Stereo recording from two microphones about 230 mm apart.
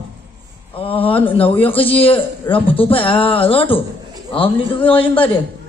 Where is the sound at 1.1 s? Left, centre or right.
Centre.